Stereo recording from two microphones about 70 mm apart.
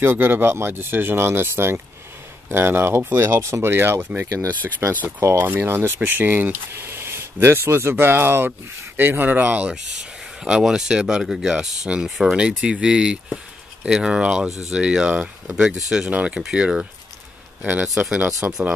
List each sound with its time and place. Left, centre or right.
0.0 s speech: right
5.2 s a man's voice: right; by 17.8 s centre
17.8 s speech: centre
18.1 s speech: centre